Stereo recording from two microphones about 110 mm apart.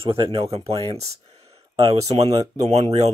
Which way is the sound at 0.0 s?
55° right (ahead or behind).